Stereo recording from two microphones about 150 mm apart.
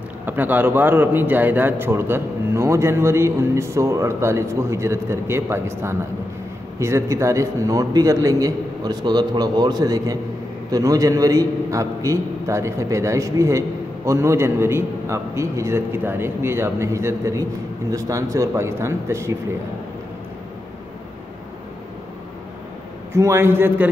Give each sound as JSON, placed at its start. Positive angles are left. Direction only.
{"t": 0.2, "sound": "a man's voice", "side_deg": -10}
{"t": 23.1, "sound": "a man's voice", "side_deg": -15}